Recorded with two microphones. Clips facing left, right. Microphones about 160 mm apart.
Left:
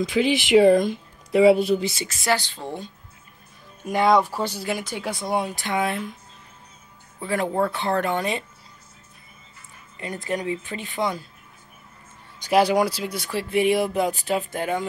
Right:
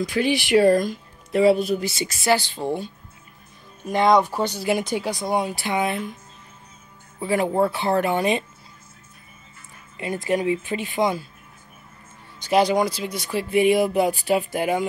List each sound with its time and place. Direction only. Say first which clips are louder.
0.1 s speech: left 2 dB; 20° left (ahead or behind)
2.0 s speech: right 6 dB; 10° right (ahead or behind)
3.8 s speech: right 1 dB; 10° left (ahead or behind)
4.6 s speech: right 6 dB; 15° right (ahead or behind)
5.0 s speech: right 2 dB; centre (ahead or behind)
7.2 s speech: right 3 dB; 10° right (ahead or behind)
9.9 s speech: right 5 dB; 15° right (ahead or behind)
12.4 s speech: even; 10° left (ahead or behind); by 14.9 s 10° right (ahead or behind)